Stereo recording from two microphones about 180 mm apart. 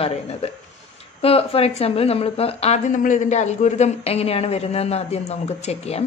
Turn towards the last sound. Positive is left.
turn(degrees=35)  # may be behind; listen again after turning